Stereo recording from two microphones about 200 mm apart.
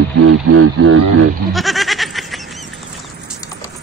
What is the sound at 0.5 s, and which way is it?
Speech, 90° right.